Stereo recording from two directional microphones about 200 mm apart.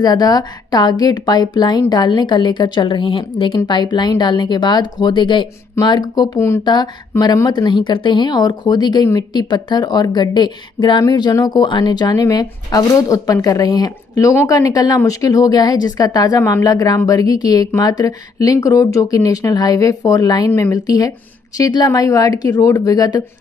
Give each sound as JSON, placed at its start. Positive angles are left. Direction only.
{"t": 0.0, "sound": "a woman's voice", "side_deg": 20}